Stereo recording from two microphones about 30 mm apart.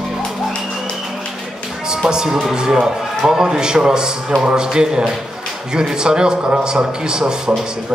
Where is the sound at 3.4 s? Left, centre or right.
Right.